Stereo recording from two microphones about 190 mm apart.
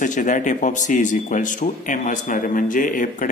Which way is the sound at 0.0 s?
40° left (ahead or behind).